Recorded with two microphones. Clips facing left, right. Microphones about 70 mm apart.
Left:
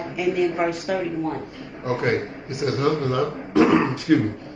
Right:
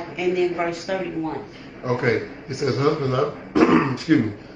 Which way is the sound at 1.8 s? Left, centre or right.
Right.